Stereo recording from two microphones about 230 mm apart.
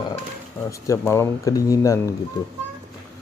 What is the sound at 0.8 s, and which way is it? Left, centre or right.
Speech, centre.